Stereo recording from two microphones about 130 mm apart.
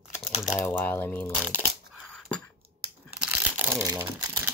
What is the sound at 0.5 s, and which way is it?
Speech, 20° left (ahead or behind).